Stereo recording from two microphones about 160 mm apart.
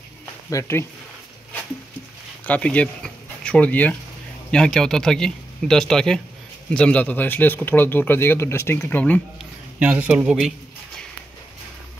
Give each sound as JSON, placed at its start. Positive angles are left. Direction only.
{"t": 0.5, "sound": "speech", "side_deg": 20}
{"t": 2.4, "sound": "a man's voice", "side_deg": 10}
{"t": 9.8, "sound": "a man's voice", "side_deg": -10}